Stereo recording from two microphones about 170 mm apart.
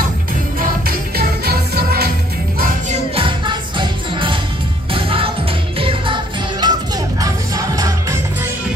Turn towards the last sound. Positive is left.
turn(degrees=-20)  # may be behind; listen again after turning